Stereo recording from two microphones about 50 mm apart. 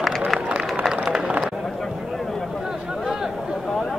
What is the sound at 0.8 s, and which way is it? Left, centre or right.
Run, centre.